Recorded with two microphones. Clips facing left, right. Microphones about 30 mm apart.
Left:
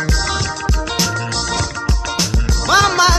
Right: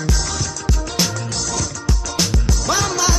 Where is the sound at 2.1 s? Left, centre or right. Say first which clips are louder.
Right 1 dB; centre.